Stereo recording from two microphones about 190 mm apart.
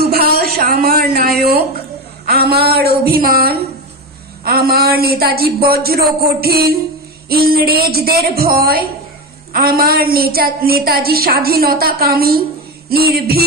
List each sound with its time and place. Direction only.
0.0 s a woman's voice: 55° right (ahead or behind)
2.2 s a sound: 55° right (ahead or behind)
4.5 s a woman's voice: 55° right (ahead or behind)